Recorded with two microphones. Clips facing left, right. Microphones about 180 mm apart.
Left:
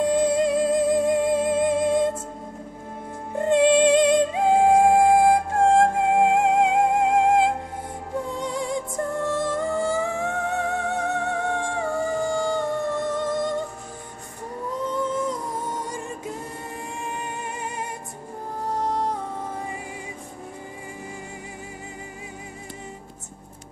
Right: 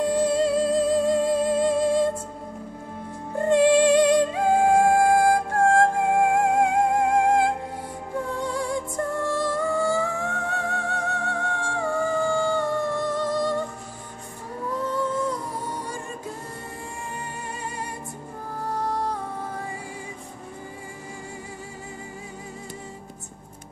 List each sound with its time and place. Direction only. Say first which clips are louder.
0.0 s music: left 1 dB; 15° left (ahead or behind)
3.3 s music: even; 20° left (ahead or behind)
12.3 s a sound: right 1 dB; 15° left (ahead or behind)
13.1 s music: even; 20° left (ahead or behind)
14.9 s humming: left 1 dB; 20° left (ahead or behind)
15.8 s music: left 2 dB; 20° left (ahead or behind)